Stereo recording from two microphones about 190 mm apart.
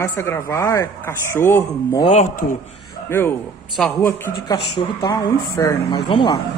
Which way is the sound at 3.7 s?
10° left (ahead or behind).